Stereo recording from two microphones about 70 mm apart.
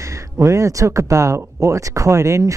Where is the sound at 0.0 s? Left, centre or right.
Right.